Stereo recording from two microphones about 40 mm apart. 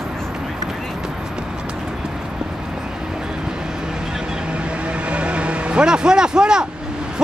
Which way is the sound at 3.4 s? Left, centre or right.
Centre.